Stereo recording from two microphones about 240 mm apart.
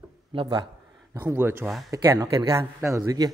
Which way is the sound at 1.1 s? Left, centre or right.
Centre.